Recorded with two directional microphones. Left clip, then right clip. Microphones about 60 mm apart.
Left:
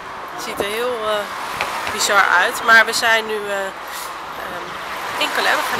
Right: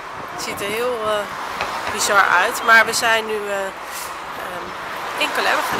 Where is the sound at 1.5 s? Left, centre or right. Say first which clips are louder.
Left 2 dB; left.